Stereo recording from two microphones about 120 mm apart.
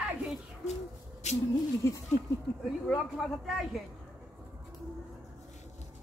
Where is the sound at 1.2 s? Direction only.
75° left (ahead or behind).